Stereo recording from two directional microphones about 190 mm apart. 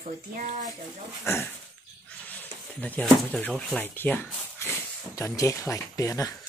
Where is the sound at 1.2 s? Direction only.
15° left (ahead or behind).